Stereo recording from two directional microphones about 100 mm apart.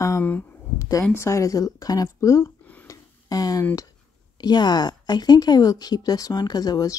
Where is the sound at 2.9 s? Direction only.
40° left (ahead or behind).